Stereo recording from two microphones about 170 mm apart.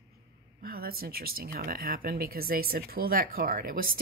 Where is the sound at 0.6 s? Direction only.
60° right (ahead or behind).